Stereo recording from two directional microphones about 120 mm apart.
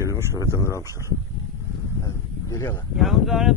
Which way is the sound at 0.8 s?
25° right (ahead or behind).